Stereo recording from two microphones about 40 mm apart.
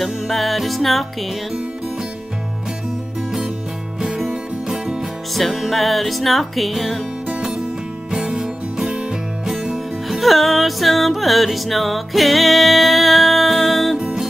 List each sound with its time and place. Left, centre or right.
0.0 s music: centre
4.1 s music: centre
5.8 s music: centre
7.2 s music: right
10.0 s music: centre